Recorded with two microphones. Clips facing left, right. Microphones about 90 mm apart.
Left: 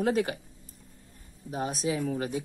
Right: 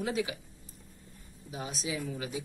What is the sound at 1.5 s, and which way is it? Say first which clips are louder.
Speech: left 7 dB; 45° left (ahead or behind).